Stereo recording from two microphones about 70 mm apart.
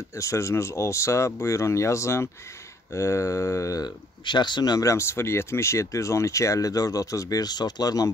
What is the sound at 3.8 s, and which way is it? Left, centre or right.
Speech, left.